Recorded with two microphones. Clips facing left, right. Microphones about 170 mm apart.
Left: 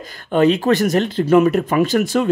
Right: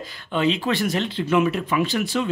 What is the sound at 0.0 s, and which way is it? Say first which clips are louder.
Speech: left 7 dB; 50° left (ahead or behind).